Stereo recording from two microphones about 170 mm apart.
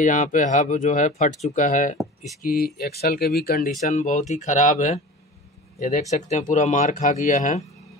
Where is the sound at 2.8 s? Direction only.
65° left (ahead or behind).